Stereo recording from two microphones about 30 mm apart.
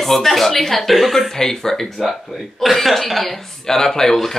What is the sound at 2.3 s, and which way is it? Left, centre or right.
Speech, centre.